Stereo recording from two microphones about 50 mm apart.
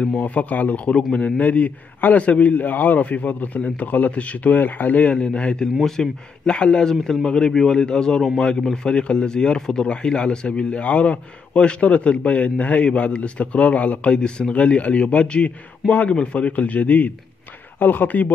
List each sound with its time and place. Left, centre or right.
0.0 s a man's voice: left
5.8 s a man's voice: centre; by 18.3 s left